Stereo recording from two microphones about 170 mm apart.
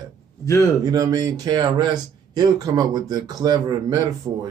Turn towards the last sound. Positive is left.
turn(degrees=-20)  # may be behind; listen again after turning